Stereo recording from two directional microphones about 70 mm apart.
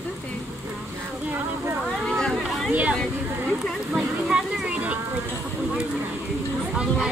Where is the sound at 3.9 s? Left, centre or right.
Centre.